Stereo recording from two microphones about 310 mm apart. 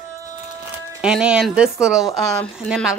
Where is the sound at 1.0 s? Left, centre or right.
Centre.